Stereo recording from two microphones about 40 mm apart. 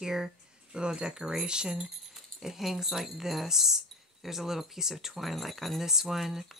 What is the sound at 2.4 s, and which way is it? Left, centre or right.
Speech, centre.